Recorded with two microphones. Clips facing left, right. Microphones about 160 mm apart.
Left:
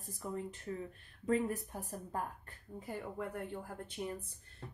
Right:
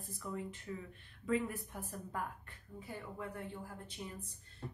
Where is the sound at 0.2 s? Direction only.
40° left (ahead or behind).